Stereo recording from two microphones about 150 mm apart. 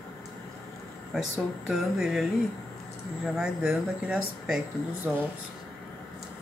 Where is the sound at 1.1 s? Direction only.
Centre (ahead or behind).